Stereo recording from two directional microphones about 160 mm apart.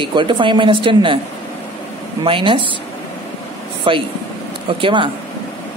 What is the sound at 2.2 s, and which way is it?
Speech, 35° right (ahead or behind).